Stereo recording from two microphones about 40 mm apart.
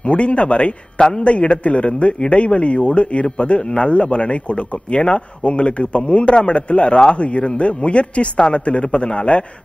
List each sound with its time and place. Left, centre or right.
0.0 s speech: left
1.3 s speech: left